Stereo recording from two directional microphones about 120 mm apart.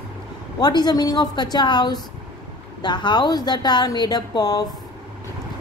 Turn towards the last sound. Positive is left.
turn(degrees=35)  # may be behind; listen again after turning